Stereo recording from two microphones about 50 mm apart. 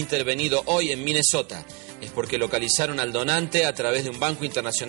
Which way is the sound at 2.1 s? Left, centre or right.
Right.